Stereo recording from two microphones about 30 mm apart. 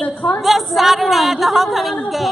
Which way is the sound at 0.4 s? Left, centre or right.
Centre.